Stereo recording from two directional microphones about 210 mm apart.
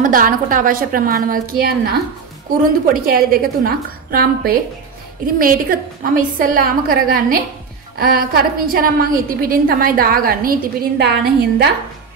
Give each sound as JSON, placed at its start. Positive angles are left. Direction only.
{"t": 0.0, "sound": "a woman's voice", "side_deg": -40}